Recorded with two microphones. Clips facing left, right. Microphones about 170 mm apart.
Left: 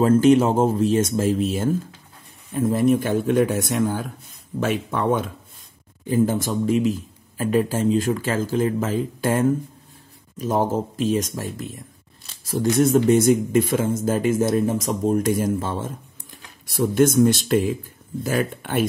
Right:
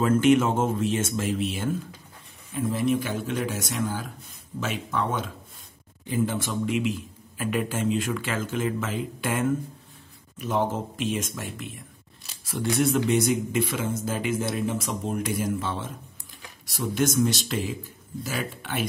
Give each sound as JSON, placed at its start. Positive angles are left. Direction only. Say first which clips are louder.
{"t": 0.0, "sound": "speech", "louder": "left 5 dB", "side_deg": 35}
{"t": 6.0, "sound": "speech", "louder": "left 6 dB", "side_deg": 40}